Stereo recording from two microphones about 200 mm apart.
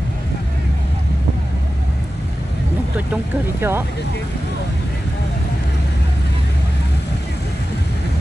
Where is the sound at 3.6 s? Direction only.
10° right (ahead or behind).